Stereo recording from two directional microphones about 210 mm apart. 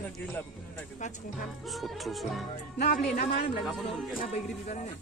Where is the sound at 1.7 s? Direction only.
Centre (ahead or behind).